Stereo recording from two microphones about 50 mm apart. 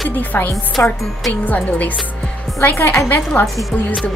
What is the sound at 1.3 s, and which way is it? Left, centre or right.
Speech, left.